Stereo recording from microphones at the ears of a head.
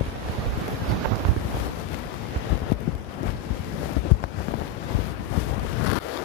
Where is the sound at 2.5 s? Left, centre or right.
Left.